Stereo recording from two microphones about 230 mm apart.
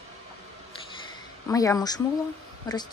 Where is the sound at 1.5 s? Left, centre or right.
Centre.